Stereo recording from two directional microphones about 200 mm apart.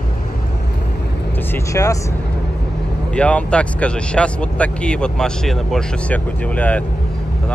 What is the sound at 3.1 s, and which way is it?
Speech, 5° left (ahead or behind).